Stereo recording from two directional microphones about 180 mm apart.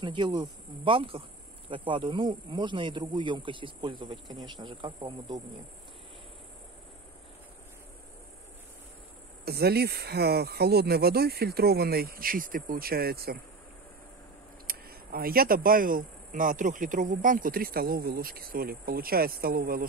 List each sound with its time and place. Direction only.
0.0 s speech: 25° right (ahead or behind)
9.4 s speech: 60° right (ahead or behind)
14.7 s speech: 55° right (ahead or behind)